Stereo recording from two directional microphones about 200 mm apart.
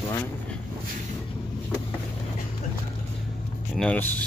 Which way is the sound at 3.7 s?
5° left (ahead or behind).